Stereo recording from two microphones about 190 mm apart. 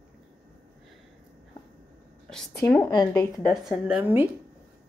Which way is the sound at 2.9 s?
20° left (ahead or behind).